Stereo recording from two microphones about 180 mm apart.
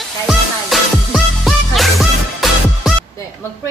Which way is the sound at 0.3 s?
Centre (ahead or behind).